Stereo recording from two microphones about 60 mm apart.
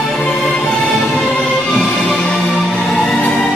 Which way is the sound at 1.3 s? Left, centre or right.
Centre.